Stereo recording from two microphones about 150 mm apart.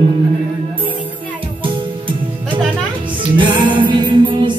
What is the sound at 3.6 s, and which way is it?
Music, 35° right (ahead or behind).